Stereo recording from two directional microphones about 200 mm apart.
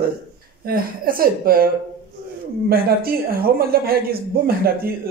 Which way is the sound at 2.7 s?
50° right (ahead or behind).